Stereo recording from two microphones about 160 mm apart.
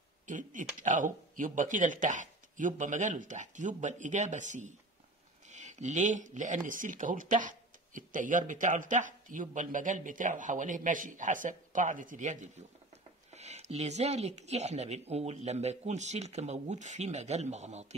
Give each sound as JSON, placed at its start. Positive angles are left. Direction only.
{"t": 0.3, "sound": "speech", "side_deg": -55}